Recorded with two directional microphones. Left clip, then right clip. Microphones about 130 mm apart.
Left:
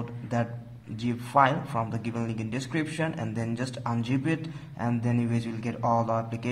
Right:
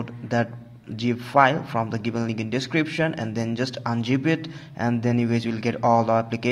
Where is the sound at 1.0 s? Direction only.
35° right (ahead or behind).